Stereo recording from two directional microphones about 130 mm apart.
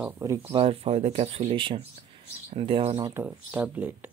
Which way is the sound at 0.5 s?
45° right (ahead or behind).